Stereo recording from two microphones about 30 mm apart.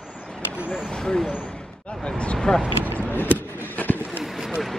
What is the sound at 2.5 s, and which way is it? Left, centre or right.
Speech, left.